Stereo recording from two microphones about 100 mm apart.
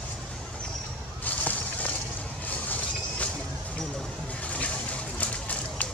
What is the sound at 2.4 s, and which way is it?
Vehicle, 15° left (ahead or behind).